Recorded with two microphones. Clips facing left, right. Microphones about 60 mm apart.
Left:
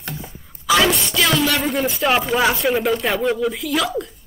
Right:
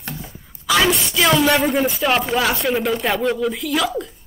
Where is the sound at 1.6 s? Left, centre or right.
Centre.